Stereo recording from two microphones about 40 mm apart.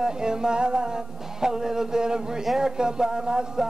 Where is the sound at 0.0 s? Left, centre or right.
Centre.